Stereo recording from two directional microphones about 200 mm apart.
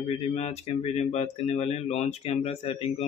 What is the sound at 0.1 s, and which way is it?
Speech, 30° left (ahead or behind).